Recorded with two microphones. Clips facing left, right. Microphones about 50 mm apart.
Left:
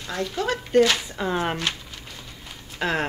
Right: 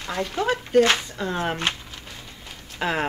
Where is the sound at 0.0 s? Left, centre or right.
Right.